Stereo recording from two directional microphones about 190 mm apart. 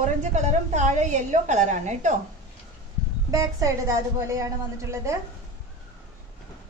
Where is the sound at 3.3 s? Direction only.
15° right (ahead or behind).